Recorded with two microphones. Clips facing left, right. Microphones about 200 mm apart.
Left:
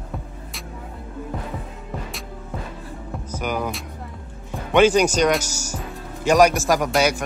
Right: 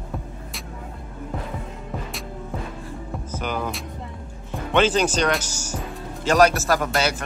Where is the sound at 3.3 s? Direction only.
10° left (ahead or behind).